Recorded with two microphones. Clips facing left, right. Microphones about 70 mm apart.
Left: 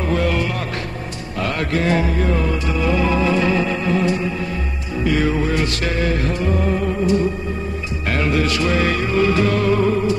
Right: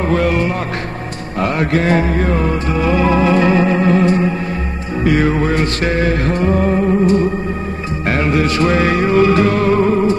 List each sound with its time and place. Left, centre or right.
0.1 s music: right